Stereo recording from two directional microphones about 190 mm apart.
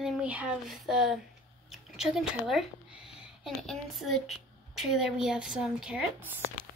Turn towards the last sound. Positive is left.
turn(degrees=-5)  # may be behind; listen again after turning